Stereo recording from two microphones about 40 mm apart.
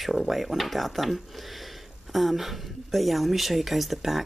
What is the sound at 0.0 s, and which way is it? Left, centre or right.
Speech, centre.